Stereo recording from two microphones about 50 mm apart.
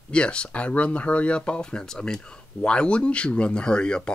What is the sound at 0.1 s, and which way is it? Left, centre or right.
Speech, left.